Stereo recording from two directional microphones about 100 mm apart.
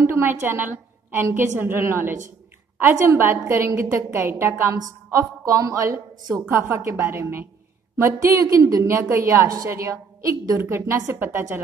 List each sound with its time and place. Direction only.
0.0 s a woman's voice: 25° right (ahead or behind)